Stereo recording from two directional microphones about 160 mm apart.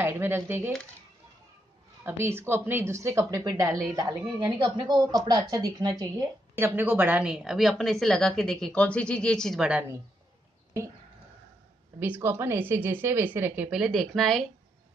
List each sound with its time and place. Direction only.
0.0 s speech: 15° right (ahead or behind)
2.0 s a woman's voice: 15° right (ahead or behind)
6.6 s a woman's voice: 10° right (ahead or behind)
12.0 s speech: 15° right (ahead or behind)